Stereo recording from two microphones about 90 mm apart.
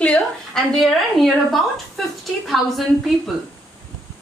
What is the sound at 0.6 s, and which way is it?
A woman's voice, 5° left (ahead or behind).